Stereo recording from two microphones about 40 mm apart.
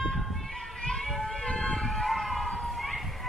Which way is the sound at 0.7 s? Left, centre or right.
Centre.